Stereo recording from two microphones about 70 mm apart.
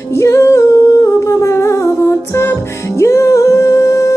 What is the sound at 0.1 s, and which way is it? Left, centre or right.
Humming, left.